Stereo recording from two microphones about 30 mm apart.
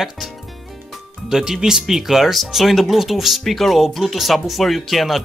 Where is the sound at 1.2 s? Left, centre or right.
Centre.